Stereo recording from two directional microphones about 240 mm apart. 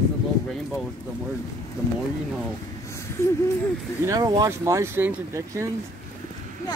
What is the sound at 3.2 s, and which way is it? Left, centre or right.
Speech, centre.